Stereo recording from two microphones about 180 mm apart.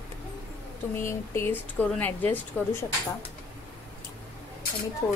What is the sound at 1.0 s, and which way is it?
A woman's voice, 15° left (ahead or behind).